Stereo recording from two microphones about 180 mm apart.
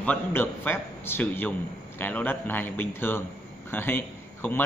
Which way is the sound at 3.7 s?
10° left (ahead or behind).